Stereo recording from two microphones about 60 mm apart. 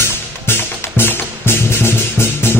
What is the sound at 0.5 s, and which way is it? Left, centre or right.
Music, left.